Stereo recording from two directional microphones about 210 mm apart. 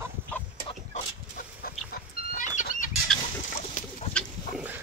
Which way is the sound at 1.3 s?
45° left (ahead or behind).